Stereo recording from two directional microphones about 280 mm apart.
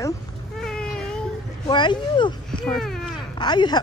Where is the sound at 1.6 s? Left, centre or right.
Centre.